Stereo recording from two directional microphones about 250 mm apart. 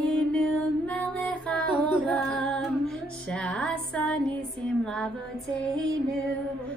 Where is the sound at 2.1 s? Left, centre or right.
Centre.